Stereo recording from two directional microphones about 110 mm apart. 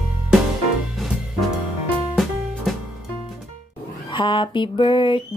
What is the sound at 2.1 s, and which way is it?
Music, centre (ahead or behind).